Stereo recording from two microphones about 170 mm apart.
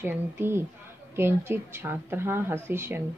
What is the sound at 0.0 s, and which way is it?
A woman's voice, 15° right (ahead or behind).